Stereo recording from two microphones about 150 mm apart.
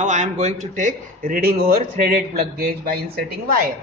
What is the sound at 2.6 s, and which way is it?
Speech, 90° right.